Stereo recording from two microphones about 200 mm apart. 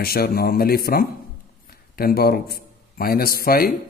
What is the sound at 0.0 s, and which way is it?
A man's voice, 50° left (ahead or behind).